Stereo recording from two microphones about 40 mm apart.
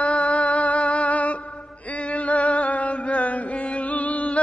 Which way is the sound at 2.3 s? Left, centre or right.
Left.